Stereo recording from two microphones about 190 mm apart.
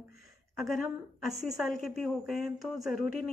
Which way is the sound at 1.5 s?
Centre (ahead or behind).